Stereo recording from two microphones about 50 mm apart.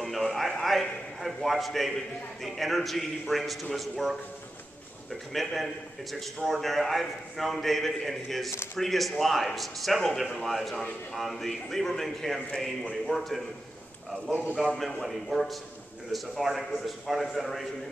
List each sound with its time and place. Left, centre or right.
0.0 s a man's voice: centre
5.3 s a man's voice: centre
14.8 s a man's voice: centre